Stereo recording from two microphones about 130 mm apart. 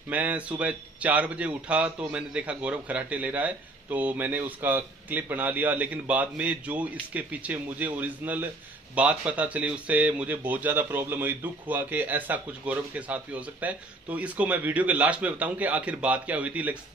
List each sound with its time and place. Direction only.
0.1 s a man's voice: 10° right (ahead or behind)